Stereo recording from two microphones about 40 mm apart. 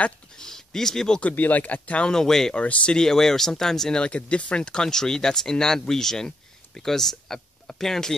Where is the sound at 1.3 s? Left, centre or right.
Left.